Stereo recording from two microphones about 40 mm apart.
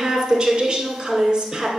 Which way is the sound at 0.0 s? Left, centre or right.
Centre.